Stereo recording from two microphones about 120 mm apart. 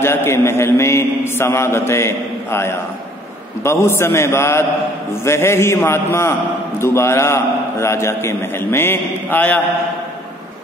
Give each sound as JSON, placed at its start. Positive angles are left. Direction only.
{"t": 0.0, "sound": "a man's voice", "side_deg": 20}